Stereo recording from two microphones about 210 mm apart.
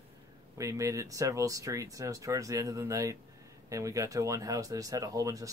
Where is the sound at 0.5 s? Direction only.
15° right (ahead or behind).